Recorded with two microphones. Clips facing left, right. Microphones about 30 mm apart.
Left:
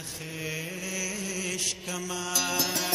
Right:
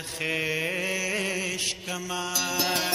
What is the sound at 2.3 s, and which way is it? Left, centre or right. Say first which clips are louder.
Music: left 2 dB; centre.